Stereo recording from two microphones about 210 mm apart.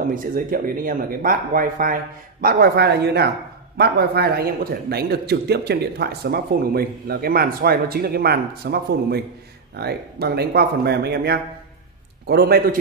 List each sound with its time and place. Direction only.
0.1 s a man's voice: 40° right (ahead or behind)